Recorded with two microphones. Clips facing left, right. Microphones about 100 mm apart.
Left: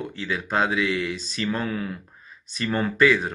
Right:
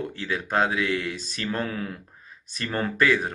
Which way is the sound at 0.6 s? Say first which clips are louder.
Left 2 dB; 45° right (ahead or behind).